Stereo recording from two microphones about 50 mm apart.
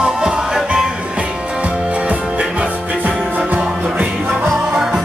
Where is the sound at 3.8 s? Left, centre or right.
Right.